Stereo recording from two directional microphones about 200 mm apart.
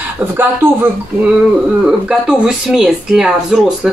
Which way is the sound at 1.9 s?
5° right (ahead or behind).